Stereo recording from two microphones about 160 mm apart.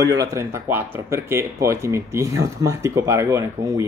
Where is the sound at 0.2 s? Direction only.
20° right (ahead or behind).